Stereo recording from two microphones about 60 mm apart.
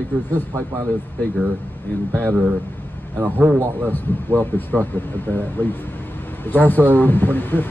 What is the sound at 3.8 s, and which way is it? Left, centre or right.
Speech, left.